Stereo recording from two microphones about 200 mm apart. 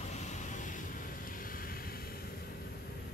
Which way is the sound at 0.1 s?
35° left (ahead or behind).